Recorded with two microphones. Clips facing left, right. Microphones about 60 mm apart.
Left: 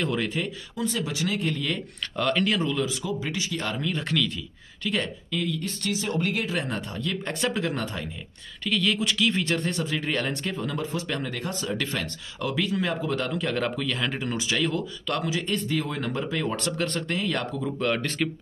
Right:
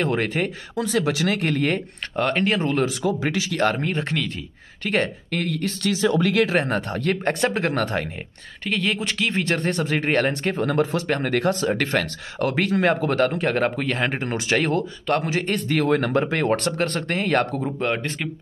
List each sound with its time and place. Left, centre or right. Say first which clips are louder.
0.0 s speech: right 5 dB; right
0.8 s speech: right 6 dB; right
1.6 s speech: right 7 dB; right
3.7 s speech: right 3 dB; right
4.8 s speech: right 5 dB; right
6.5 s speech: right 7 dB; right
8.6 s speech: right 1 dB; right
11.1 s speech: right 9 dB; right
17.6 s speech: right 2 dB; right